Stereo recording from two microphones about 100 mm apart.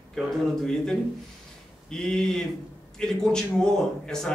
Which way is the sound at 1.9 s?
5° left (ahead or behind).